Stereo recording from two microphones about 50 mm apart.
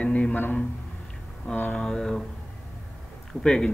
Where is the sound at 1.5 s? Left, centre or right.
Centre.